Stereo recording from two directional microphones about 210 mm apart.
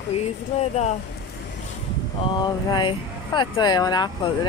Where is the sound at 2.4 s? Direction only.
20° left (ahead or behind).